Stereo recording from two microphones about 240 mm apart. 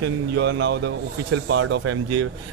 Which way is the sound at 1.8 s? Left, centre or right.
Right.